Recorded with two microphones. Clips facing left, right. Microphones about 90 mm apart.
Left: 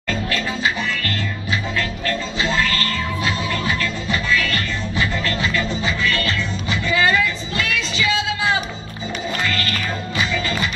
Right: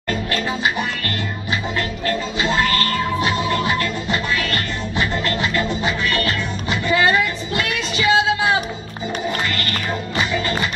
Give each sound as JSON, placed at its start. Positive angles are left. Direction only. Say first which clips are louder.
{"t": 2.4, "sound": "music", "louder": "right 2 dB", "side_deg": -25}
{"t": 5.9, "sound": "music", "louder": "right 1 dB", "side_deg": -40}